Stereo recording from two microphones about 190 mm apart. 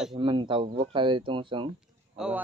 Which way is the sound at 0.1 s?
25° right (ahead or behind).